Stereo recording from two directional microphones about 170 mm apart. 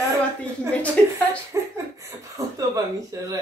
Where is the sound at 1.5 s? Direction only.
15° right (ahead or behind).